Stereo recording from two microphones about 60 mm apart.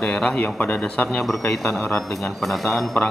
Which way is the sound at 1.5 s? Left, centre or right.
Centre.